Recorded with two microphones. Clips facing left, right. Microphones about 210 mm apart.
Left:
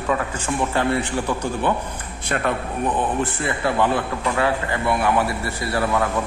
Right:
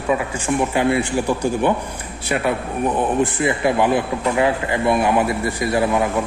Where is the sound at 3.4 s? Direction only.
15° right (ahead or behind).